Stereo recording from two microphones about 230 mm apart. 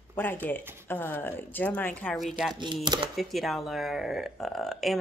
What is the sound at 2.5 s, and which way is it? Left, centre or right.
Speech, centre.